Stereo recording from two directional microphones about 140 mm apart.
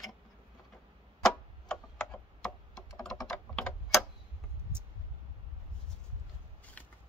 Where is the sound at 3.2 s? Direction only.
5° left (ahead or behind).